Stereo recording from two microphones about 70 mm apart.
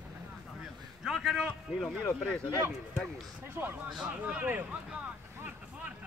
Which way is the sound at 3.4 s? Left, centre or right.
Right.